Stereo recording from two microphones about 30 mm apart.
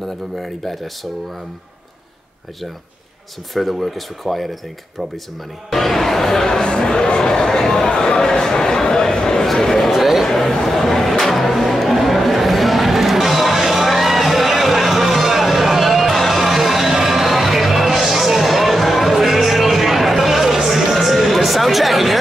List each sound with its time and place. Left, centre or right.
3.5 s speech: centre
5.7 s speech: centre
6.6 s speech: left
9.4 s speech: centre
9.9 s speech: centre
10.2 s speech: centre
10.5 s a sound: centre